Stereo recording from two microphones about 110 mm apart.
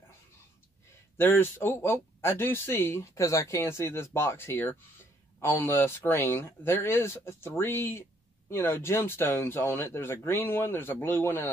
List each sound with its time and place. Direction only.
1.1 s speech: 20° left (ahead or behind)